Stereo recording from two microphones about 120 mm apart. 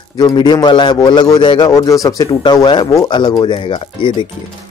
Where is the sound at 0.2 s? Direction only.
35° left (ahead or behind).